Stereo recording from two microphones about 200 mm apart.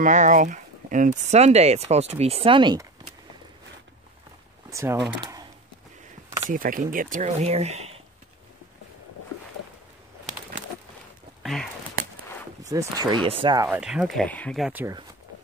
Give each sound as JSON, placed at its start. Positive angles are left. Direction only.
{"t": 0.0, "sound": "speech", "side_deg": -40}
{"t": 4.6, "sound": "speech", "side_deg": -15}
{"t": 5.2, "sound": "a sound", "side_deg": -20}
{"t": 6.4, "sound": "speech", "side_deg": -40}
{"t": 11.4, "sound": "a sound", "side_deg": 0}
{"t": 12.6, "sound": "speech", "side_deg": -20}
{"t": 13.7, "sound": "speech", "side_deg": -5}
{"t": 14.7, "sound": "speech", "side_deg": -10}